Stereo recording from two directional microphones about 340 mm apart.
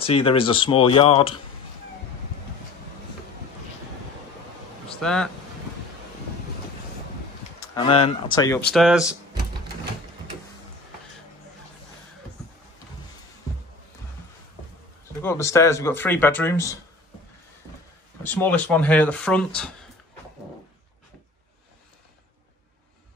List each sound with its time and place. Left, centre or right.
0.0 s speech: centre
5.0 s speech: centre
7.6 s speech: centre
15.2 s speech: centre
18.2 s speech: centre